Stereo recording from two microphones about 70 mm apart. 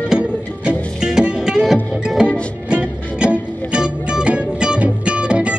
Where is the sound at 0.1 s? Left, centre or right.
Centre.